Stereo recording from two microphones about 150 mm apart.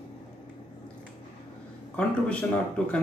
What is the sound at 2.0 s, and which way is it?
Speech, 5° left (ahead or behind).